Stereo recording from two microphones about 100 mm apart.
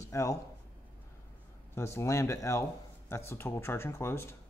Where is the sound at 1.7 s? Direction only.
25° left (ahead or behind).